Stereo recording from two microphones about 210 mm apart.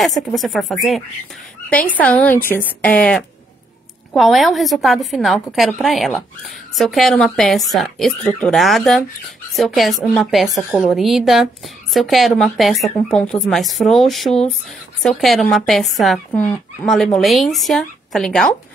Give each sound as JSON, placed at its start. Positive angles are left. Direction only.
{"t": 0.0, "sound": "a woman's voice", "side_deg": 0}